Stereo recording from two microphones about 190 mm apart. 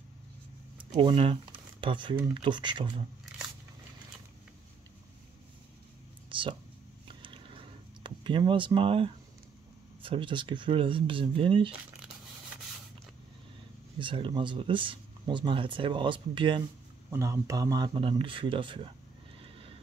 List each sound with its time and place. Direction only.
0.7 s speech: 25° right (ahead or behind)
6.2 s a sound: 25° right (ahead or behind)
10.0 s speech: 25° right (ahead or behind)
13.9 s speech: 25° right (ahead or behind)
17.1 s speech: 15° right (ahead or behind)